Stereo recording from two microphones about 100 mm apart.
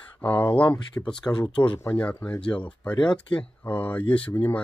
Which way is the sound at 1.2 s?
50° left (ahead or behind).